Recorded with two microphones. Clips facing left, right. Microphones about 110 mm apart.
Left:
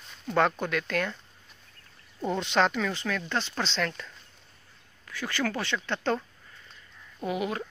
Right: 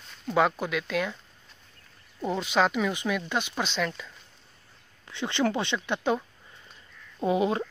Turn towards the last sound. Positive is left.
turn(degrees=-25)  # may be behind; listen again after turning